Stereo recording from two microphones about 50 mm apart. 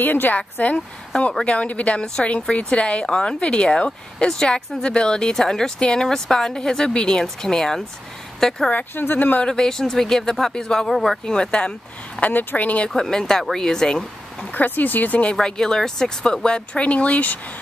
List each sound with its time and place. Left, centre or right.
0.0 s speech: left
0.7 s speech: centre
8.9 s speech: left
9.4 s speech: centre
11.2 s speech: centre
12.2 s speech: left
12.8 s speech: centre
14.5 s speech: left
15.4 s speech: centre; by 17.4 s left